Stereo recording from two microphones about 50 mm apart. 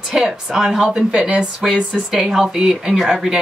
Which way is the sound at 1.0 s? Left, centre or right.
Centre.